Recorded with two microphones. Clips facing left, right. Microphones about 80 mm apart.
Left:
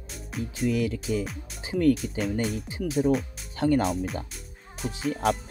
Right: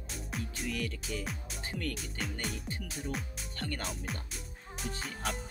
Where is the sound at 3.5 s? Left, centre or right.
Centre.